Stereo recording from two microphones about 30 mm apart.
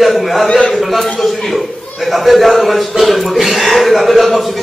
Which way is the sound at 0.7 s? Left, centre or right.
Centre.